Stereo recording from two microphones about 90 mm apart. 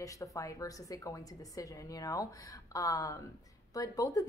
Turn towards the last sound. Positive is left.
turn(degrees=40)  # may be behind; listen again after turning